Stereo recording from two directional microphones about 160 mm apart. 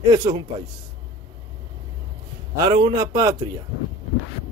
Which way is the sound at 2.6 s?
30° right (ahead or behind).